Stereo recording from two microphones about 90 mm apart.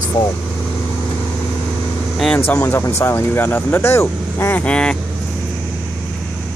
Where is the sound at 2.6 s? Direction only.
30° left (ahead or behind).